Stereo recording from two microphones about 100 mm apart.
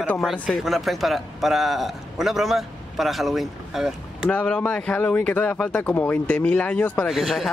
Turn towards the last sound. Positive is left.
turn(degrees=0)  # may be behind; listen again after turning